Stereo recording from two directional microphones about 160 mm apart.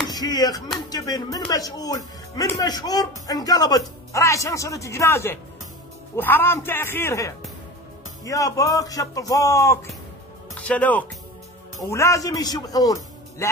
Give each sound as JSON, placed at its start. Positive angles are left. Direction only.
{"t": 0.1, "sound": "speech", "side_deg": 25}